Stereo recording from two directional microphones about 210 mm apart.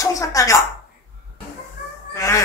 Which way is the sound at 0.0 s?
15° left (ahead or behind).